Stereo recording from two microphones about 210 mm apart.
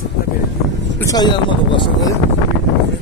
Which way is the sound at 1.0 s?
20° left (ahead or behind).